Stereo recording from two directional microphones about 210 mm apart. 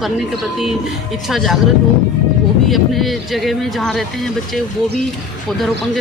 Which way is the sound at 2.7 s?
Centre (ahead or behind).